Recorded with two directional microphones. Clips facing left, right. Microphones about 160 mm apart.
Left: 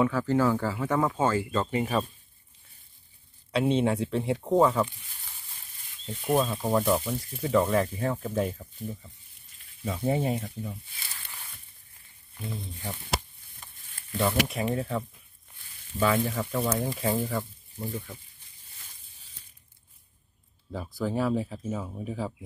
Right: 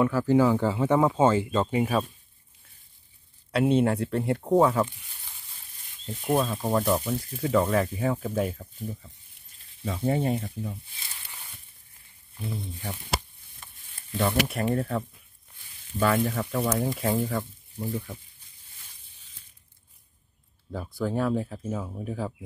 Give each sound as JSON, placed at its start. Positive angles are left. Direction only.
{"t": 0.0, "sound": "speech", "side_deg": -5}
{"t": 0.4, "sound": "speech", "side_deg": -15}
{"t": 3.5, "sound": "speech", "side_deg": -5}
{"t": 6.0, "sound": "speech", "side_deg": 0}
{"t": 10.0, "sound": "speech", "side_deg": 0}
{"t": 12.4, "sound": "speech", "side_deg": 0}
{"t": 14.1, "sound": "speech", "side_deg": 0}
{"t": 20.7, "sound": "speech", "side_deg": 0}